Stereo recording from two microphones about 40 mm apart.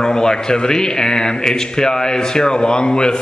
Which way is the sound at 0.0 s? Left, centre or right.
Centre.